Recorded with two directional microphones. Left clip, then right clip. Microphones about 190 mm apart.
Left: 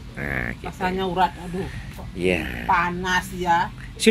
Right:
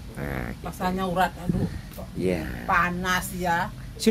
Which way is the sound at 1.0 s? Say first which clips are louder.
Left 3 dB; 35° right (ahead or behind).